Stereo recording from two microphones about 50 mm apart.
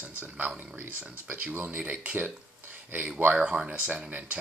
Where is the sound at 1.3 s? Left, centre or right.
Right.